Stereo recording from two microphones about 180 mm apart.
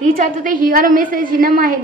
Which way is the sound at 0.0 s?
50° right (ahead or behind).